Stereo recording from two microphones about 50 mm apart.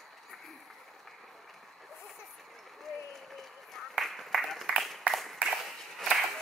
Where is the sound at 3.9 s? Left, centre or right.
Centre.